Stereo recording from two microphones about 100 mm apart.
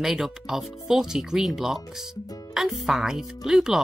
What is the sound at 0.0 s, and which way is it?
Speech, 5° right (ahead or behind).